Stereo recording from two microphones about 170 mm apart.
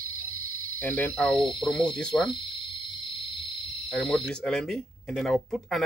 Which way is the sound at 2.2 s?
30° left (ahead or behind).